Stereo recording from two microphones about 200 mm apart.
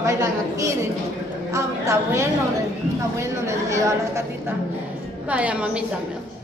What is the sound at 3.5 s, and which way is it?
Speech, 15° right (ahead or behind).